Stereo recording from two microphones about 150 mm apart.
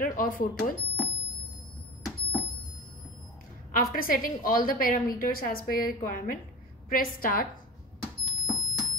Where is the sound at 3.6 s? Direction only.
70° left (ahead or behind).